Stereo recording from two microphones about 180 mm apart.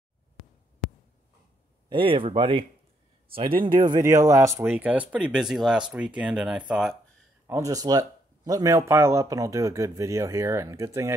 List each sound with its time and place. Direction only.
1.9 s speech: 30° right (ahead or behind); by 7.0 s centre (ahead or behind)
7.4 s speech: 15° right (ahead or behind)